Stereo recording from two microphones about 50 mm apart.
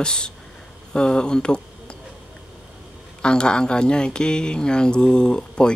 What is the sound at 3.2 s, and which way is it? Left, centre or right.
Speech, centre.